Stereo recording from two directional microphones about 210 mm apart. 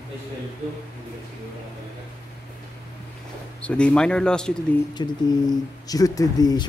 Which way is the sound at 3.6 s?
5° left (ahead or behind).